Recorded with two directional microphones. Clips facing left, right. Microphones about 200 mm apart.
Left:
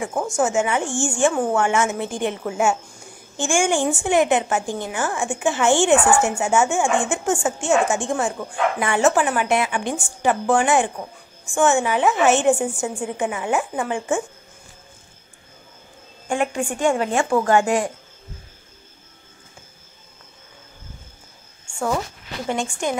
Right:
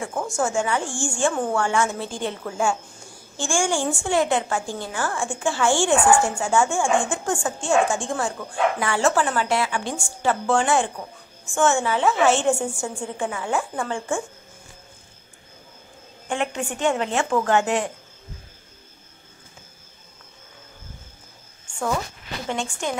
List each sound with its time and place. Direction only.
0.0 s a woman's voice: 15° left (ahead or behind)
16.3 s a woman's voice: 10° left (ahead or behind)
21.6 s a sound: 10° left (ahead or behind)
22.5 s a woman's voice: 10° left (ahead or behind)